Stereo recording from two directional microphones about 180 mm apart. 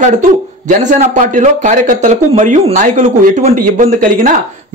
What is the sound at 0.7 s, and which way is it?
Speech, 45° right (ahead or behind).